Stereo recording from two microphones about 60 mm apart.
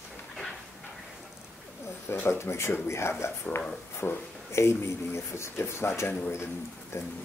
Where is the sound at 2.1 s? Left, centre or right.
Left.